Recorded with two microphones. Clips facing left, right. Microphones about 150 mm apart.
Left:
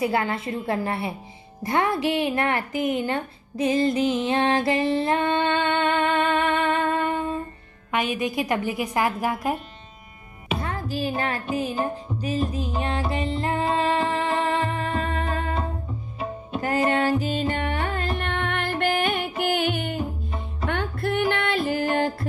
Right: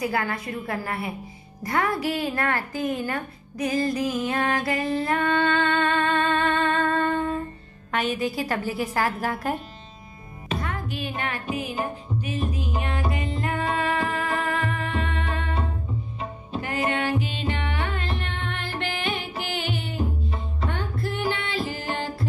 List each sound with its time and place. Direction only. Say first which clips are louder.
0.0 s a woman's voice: left 3 dB; 25° left (ahead or behind)
10.6 s music: left 3 dB; 35° left (ahead or behind)
16.6 s music: left 4 dB; 40° left (ahead or behind)